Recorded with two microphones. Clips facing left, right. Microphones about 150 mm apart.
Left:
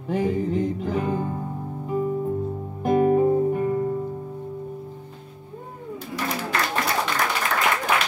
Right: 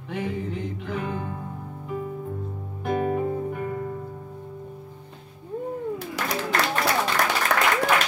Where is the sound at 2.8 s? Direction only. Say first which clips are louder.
Left 6 dB; 40° left (ahead or behind).